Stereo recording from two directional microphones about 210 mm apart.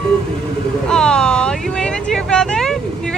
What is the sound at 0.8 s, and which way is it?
Speech, 5° left (ahead or behind).